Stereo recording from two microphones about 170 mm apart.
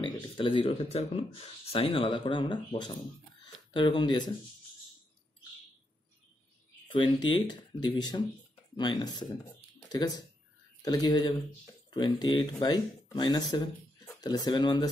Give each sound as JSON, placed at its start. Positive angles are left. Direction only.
{"t": 0.0, "sound": "speech", "side_deg": 30}
{"t": 6.9, "sound": "speech", "side_deg": 25}